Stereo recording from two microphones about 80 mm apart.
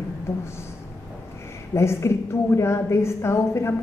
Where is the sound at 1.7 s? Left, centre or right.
Left.